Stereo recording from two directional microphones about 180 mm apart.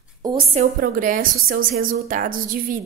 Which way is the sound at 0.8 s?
50° right (ahead or behind).